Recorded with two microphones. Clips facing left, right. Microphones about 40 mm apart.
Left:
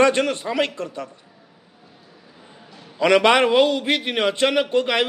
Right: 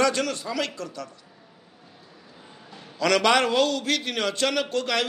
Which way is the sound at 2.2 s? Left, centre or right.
Centre.